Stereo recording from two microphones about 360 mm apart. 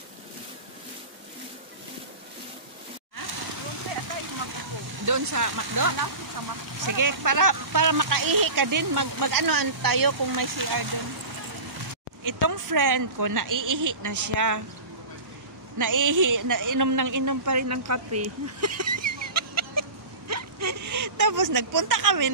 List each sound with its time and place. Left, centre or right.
5.0 s speech: right
12.3 s speech: right
15.8 s speech: right
19.3 s chicken: right